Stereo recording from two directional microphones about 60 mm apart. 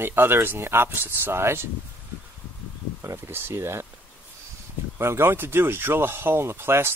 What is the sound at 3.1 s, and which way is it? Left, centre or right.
Speech, right.